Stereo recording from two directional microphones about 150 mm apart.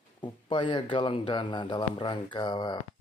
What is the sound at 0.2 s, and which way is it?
Speech, 30° left (ahead or behind).